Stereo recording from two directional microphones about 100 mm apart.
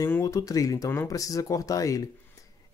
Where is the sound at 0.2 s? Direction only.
35° left (ahead or behind).